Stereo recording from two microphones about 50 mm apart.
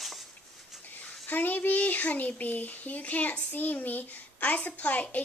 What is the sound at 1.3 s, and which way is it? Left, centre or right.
A child's voice, left.